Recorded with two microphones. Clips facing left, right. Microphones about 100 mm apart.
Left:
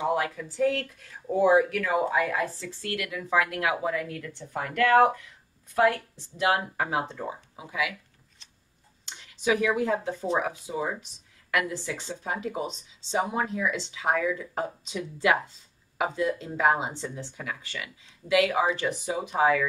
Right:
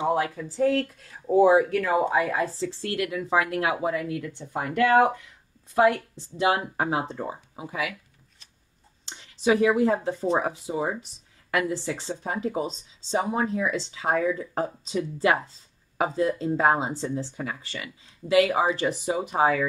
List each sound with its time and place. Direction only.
0.0 s speech: 30° right (ahead or behind)
9.2 s a sound: 35° right (ahead or behind)
9.8 s speech: 35° right (ahead or behind)